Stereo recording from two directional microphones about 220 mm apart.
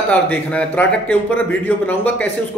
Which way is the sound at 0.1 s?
5° left (ahead or behind).